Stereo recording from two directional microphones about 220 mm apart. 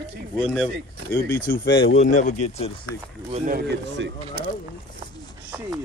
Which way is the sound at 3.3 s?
40° right (ahead or behind).